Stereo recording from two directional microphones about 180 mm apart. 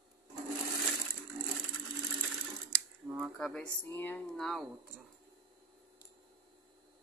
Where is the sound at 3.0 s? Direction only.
15° right (ahead or behind).